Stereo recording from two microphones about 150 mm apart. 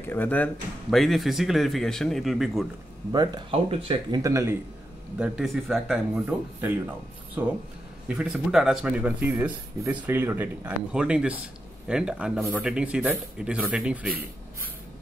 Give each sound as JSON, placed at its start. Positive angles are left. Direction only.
{"t": 0.1, "sound": "speech", "side_deg": 10}
{"t": 0.8, "sound": "speech", "side_deg": 0}
{"t": 3.1, "sound": "speech", "side_deg": -30}
{"t": 4.2, "sound": "a man's voice", "side_deg": -20}
{"t": 5.2, "sound": "speech", "side_deg": 0}
{"t": 6.1, "sound": "speech", "side_deg": -10}
{"t": 8.1, "sound": "speech", "side_deg": -5}